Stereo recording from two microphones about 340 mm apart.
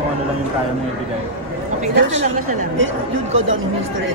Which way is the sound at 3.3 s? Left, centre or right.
Right.